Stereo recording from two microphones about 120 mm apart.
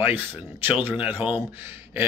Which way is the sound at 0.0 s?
15° right (ahead or behind).